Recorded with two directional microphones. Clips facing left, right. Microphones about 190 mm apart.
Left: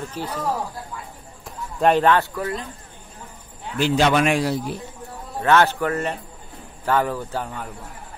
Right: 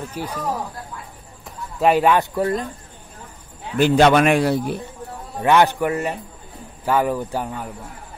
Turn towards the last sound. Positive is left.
turn(degrees=-10)  # may be behind; listen again after turning